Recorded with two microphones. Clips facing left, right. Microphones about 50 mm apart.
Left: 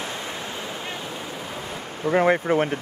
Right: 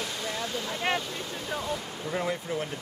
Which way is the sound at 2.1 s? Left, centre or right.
Left.